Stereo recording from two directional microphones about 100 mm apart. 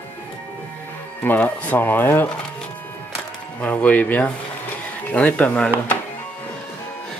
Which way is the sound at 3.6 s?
15° left (ahead or behind).